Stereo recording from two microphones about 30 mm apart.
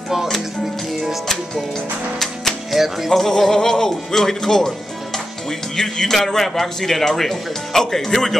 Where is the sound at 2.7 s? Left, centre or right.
Centre.